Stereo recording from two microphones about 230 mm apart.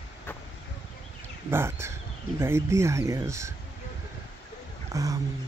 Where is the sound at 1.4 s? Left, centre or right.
Centre.